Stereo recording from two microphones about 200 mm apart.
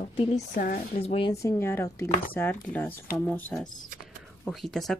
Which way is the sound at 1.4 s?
15° left (ahead or behind).